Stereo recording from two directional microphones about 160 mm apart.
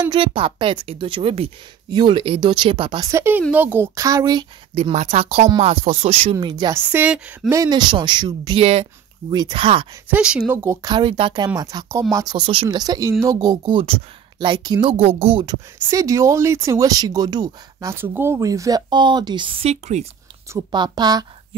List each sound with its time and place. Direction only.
0.1 s a woman's voice: 30° right (ahead or behind)
3.1 s speech: 15° right (ahead or behind)
4.7 s a woman's voice: 40° right (ahead or behind)
6.7 s speech: 10° right (ahead or behind)
7.5 s a woman's voice: 25° right (ahead or behind)
10.1 s speech: 5° right (ahead or behind); by 15.0 s 30° right (ahead or behind)
15.0 s a woman's voice: 40° right (ahead or behind)
15.4 s speech: 20° right (ahead or behind); by 20.1 s 40° right (ahead or behind)
20.7 s speech: 25° right (ahead or behind)